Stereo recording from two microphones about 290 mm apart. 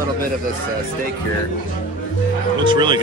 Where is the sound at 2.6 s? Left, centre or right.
Centre.